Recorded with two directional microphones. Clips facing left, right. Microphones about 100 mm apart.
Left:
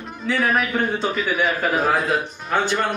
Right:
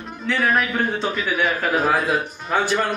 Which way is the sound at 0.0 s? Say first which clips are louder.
Even; centre (ahead or behind).